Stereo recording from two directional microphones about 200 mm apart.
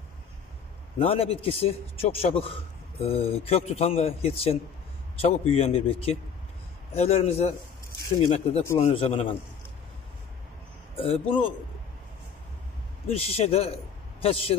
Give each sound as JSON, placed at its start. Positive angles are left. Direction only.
{"t": 0.9, "sound": "a man's voice", "side_deg": 30}
{"t": 11.0, "sound": "a man's voice", "side_deg": 30}
{"t": 13.1, "sound": "a man's voice", "side_deg": 30}